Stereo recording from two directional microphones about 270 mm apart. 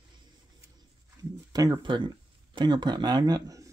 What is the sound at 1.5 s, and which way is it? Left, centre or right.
Speech, centre.